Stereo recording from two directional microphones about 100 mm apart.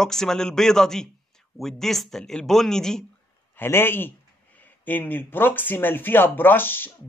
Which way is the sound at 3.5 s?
20° left (ahead or behind).